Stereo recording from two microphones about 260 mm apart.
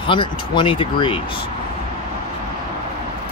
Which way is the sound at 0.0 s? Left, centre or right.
Centre.